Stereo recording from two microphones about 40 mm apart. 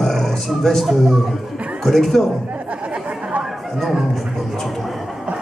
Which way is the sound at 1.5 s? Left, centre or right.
Right.